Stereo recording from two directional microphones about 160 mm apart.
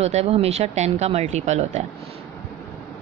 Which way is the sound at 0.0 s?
40° right (ahead or behind).